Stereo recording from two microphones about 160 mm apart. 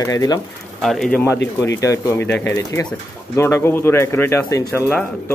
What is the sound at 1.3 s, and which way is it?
Speech, 90° left.